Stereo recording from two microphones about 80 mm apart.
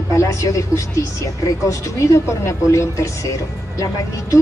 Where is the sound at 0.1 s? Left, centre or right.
Left.